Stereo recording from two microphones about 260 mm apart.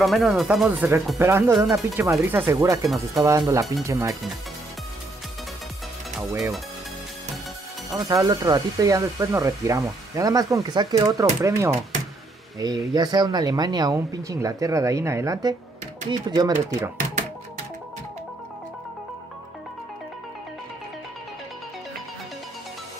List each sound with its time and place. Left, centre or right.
0.0 s speech: centre
1.8 s speech: centre
7.9 s speech: centre